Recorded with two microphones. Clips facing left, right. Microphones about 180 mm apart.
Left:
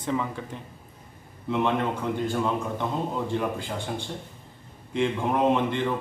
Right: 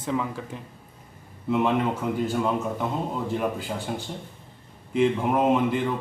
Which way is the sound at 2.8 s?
5° right (ahead or behind).